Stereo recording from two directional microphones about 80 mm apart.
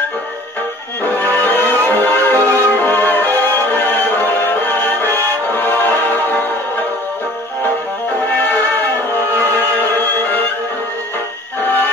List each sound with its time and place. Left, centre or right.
1.0 s music: left
8.4 s music: left